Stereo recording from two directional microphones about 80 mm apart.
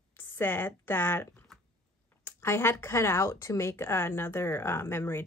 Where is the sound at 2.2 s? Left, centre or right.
Left.